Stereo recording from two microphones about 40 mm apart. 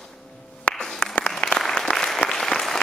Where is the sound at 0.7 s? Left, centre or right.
Left.